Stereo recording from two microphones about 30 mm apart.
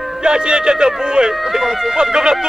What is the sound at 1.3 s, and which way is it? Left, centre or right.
Speech, centre.